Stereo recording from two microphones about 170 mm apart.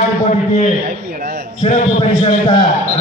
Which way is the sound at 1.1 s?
60° right (ahead or behind).